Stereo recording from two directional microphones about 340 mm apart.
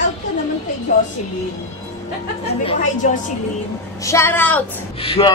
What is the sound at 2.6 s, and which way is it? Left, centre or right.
Speech, centre.